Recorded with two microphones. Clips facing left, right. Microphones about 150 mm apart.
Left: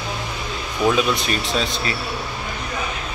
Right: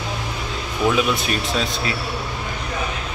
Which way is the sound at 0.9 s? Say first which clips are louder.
Even; 5° right (ahead or behind).